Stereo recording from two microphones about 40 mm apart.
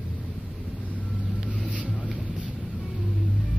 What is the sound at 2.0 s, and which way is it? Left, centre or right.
Vehicle, right.